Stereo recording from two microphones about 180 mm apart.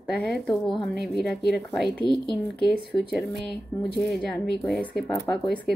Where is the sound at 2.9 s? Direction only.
20° left (ahead or behind).